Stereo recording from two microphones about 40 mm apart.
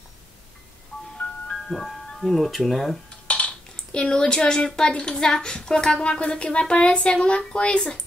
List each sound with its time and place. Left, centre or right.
1.5 s speech: centre
3.3 s a sound: left
3.9 s speech: centre